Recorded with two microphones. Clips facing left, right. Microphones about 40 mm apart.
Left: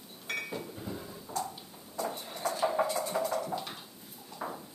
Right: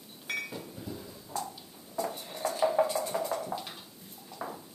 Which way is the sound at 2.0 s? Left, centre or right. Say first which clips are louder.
Right 1 dB; centre.